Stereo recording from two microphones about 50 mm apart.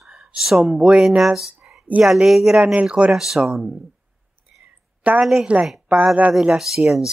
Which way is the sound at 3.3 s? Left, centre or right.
Centre.